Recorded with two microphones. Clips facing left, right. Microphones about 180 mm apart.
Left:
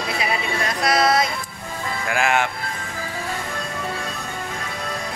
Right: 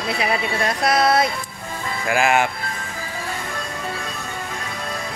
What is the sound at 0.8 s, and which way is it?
Music, 60° right (ahead or behind).